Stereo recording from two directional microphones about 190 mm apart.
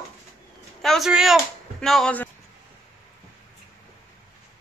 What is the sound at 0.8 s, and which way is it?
Speech, centre (ahead or behind).